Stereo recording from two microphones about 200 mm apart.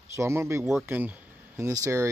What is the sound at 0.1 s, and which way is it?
Speech, 15° right (ahead or behind).